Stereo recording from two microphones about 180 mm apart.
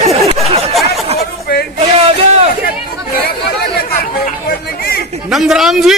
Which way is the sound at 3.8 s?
55° left (ahead or behind).